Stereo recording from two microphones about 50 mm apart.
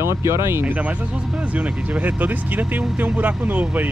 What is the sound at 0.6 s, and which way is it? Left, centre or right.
Speech, right.